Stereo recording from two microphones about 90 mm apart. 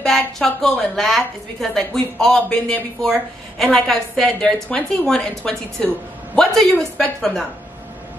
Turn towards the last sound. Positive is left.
turn(degrees=5)  # may be behind; listen again after turning